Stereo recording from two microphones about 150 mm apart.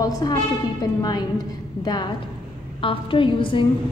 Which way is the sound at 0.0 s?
25° left (ahead or behind).